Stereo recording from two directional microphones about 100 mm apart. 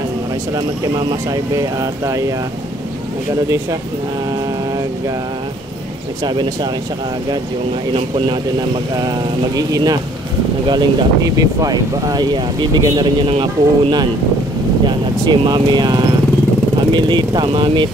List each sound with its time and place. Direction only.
0.9 s speech: 40° right (ahead or behind)
6.2 s speech: 45° right (ahead or behind)
9.6 s speech: 40° right (ahead or behind)